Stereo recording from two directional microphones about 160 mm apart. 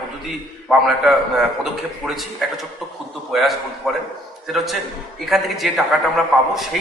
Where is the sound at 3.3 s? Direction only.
Centre (ahead or behind).